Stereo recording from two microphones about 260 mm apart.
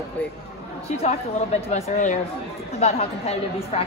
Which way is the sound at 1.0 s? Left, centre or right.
Left.